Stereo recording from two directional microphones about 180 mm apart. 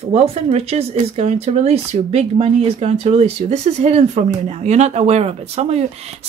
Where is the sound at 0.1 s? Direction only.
35° right (ahead or behind).